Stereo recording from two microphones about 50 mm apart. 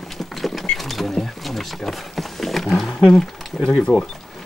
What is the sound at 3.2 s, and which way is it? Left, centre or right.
Speech, centre.